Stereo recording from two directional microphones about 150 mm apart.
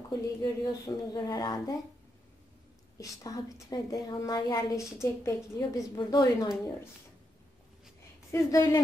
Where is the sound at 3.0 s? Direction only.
25° left (ahead or behind).